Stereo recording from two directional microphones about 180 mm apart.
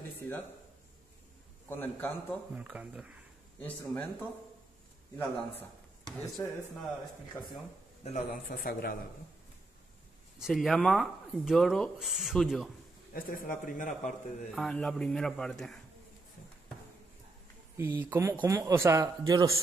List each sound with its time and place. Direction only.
1.7 s a man's voice: 10° left (ahead or behind)
2.5 s speech: 5° right (ahead or behind)
3.6 s a man's voice: 10° left (ahead or behind)
5.2 s a man's voice: 5° left (ahead or behind)
8.0 s speech: 40° left (ahead or behind)
10.4 s speech: centre (ahead or behind)
13.1 s speech: 50° left (ahead or behind)
14.5 s speech: centre (ahead or behind)
17.7 s speech: 10° right (ahead or behind)